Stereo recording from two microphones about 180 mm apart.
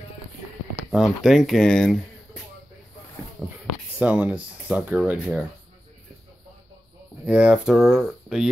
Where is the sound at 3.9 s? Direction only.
10° right (ahead or behind).